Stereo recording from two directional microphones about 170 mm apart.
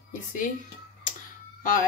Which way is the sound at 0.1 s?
50° left (ahead or behind).